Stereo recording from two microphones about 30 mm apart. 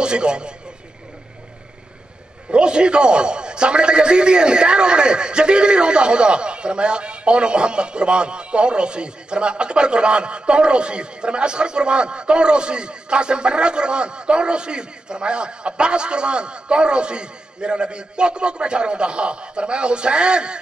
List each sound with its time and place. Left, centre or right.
0.0 s a man's voice: right
2.5 s a man's voice: right